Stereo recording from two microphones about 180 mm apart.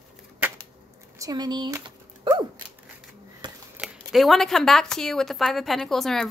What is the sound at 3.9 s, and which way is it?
A woman's voice, centre (ahead or behind).